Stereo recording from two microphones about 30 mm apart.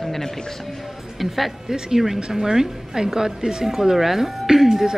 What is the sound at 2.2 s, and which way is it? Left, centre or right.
A woman's voice, right.